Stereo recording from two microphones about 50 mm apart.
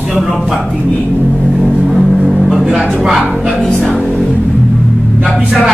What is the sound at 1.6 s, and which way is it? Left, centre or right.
Music, centre.